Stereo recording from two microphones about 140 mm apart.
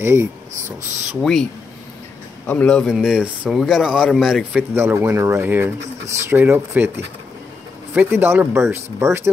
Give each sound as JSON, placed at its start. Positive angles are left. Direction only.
{"t": 0.0, "sound": "speech", "side_deg": -15}
{"t": 1.2, "sound": "a man's voice", "side_deg": 5}
{"t": 4.8, "sound": "speech", "side_deg": -20}
{"t": 7.9, "sound": "speech", "side_deg": -15}